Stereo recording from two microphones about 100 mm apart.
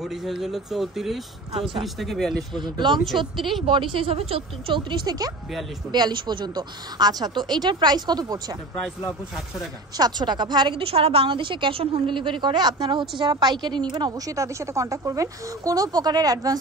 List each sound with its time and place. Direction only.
0.0 s speech: 5° right (ahead or behind)
1.5 s a woman's voice: 65° right (ahead or behind)
2.0 s speech: centre (ahead or behind)
2.6 s speech: 50° right (ahead or behind)
3.3 s speech: centre (ahead or behind)
3.6 s a woman's voice: 55° right (ahead or behind)
9.9 s speech: 45° right (ahead or behind)
10.8 s a woman's voice: 75° right (ahead or behind); by 16.5 s 40° right (ahead or behind)